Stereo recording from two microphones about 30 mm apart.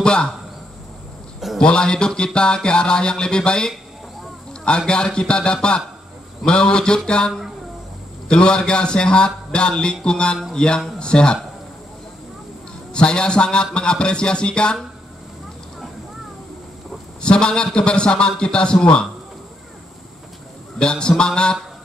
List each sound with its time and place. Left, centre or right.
0.0 s speech: left
1.6 s music: left
4.6 s a man's voice: left
6.4 s music: left
8.3 s a man's voice: left
12.9 s a man's voice: left
17.2 s a man's voice: left
20.8 s music: left